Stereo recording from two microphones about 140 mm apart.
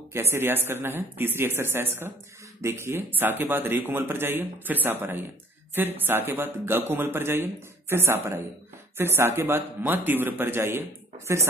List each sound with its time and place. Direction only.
0.1 s a man's voice: 15° right (ahead or behind)